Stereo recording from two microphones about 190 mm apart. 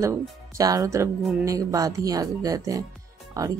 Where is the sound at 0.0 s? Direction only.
15° right (ahead or behind).